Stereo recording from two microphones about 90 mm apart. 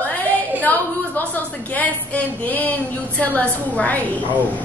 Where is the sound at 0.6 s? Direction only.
20° left (ahead or behind).